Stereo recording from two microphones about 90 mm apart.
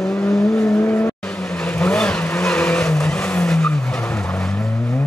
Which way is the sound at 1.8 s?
10° left (ahead or behind).